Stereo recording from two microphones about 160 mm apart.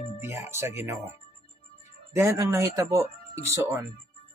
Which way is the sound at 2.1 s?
15° right (ahead or behind).